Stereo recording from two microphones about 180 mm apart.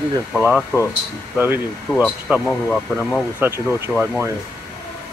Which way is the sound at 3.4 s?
15° right (ahead or behind).